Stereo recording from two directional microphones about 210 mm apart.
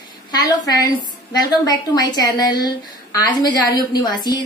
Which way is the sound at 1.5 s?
20° left (ahead or behind).